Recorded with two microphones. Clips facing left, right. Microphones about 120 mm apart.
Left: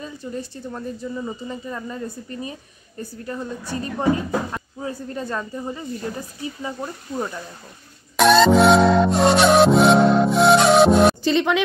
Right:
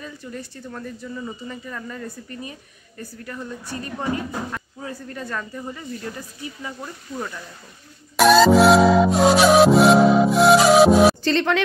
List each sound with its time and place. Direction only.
0.0 s speech: 25° left (ahead or behind)
8.2 s music: centre (ahead or behind)
11.2 s speech: 10° left (ahead or behind)